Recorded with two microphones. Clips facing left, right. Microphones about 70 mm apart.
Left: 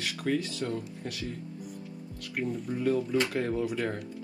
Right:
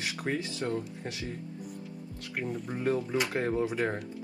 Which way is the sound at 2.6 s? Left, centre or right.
Right.